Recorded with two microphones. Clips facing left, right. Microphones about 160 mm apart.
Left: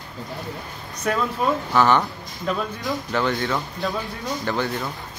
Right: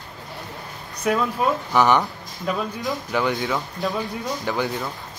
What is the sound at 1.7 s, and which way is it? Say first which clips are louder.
Speech: even; 15° right (ahead or behind).